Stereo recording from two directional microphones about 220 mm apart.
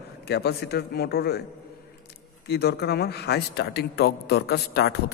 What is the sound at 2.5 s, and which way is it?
A man's voice, 45° left (ahead or behind).